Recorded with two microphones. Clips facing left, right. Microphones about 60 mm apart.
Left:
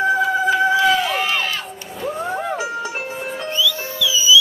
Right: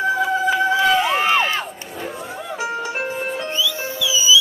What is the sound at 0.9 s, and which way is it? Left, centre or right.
Run, right.